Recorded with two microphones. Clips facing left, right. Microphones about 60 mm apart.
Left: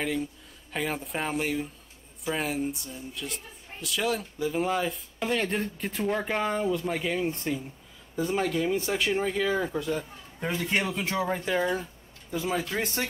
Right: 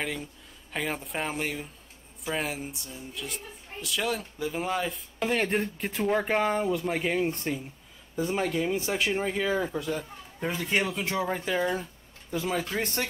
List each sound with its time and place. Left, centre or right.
0.0 s speech: centre
5.3 s speech: right
5.6 s speech: centre
6.2 s speech: centre
9.6 s speech: centre